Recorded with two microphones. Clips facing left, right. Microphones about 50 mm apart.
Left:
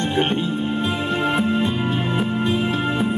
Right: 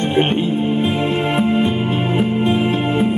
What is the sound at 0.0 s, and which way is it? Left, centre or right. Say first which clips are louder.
Music: right 4 dB; right.